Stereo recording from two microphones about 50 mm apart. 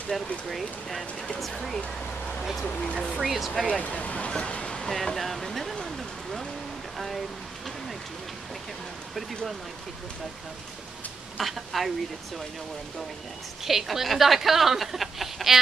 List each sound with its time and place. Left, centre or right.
0.1 s speech: centre
2.7 s speech: left
3.0 s speech: centre
3.8 s speech: left
4.9 s a sound: centre
9.1 s speech: centre
11.3 s speech: centre
13.7 s speech: centre